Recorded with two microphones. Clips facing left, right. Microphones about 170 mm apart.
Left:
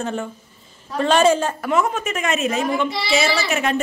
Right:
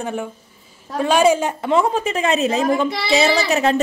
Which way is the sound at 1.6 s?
30° right (ahead or behind).